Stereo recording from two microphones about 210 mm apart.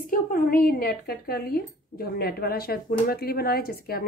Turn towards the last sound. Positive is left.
turn(degrees=45)  # may be behind; listen again after turning